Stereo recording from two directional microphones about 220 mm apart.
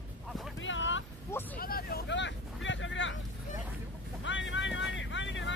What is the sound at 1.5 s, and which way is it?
Vehicle, 40° left (ahead or behind).